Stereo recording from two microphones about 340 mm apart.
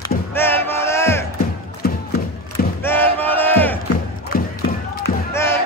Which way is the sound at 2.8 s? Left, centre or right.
Centre.